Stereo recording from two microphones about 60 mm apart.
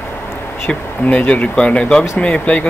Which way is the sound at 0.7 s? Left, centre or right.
Left.